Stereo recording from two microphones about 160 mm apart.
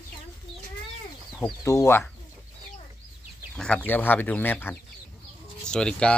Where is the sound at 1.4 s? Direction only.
20° left (ahead or behind).